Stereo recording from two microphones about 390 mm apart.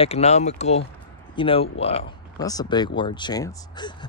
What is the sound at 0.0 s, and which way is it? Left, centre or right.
Speech, centre.